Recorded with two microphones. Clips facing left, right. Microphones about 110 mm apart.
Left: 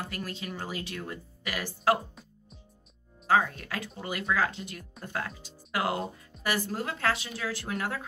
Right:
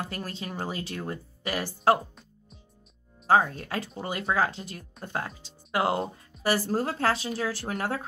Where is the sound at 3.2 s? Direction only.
35° right (ahead or behind).